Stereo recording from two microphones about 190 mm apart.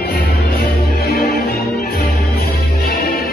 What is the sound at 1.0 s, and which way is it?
Music, 55° left (ahead or behind).